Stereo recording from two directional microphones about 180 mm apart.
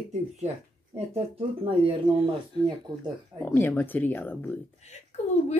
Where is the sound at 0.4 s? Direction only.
40° right (ahead or behind).